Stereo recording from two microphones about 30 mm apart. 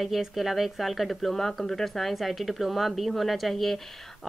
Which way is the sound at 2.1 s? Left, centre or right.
Centre.